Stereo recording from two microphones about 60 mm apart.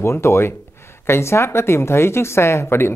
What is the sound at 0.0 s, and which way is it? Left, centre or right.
Speech, left.